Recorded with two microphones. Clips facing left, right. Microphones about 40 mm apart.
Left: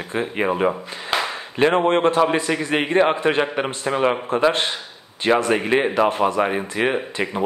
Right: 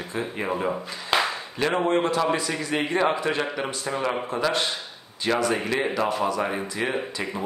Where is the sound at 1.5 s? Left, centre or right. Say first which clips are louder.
Left 7 dB; left.